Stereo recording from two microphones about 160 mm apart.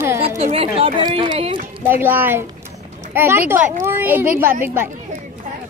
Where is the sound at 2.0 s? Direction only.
10° right (ahead or behind).